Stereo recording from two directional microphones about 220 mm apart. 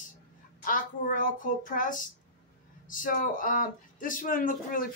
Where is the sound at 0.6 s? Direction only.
40° left (ahead or behind).